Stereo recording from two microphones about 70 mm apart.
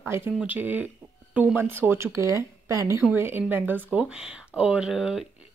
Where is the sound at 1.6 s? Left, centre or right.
Right.